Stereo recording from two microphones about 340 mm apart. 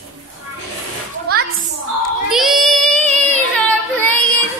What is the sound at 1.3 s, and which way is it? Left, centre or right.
Children playing, right.